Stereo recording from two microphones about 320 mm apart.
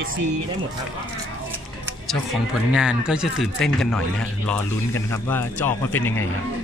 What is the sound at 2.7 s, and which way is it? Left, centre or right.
Speech, centre.